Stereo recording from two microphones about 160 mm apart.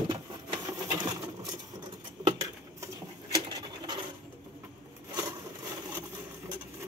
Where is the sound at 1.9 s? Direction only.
25° right (ahead or behind).